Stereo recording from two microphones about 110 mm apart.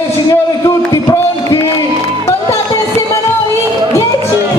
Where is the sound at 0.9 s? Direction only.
30° left (ahead or behind).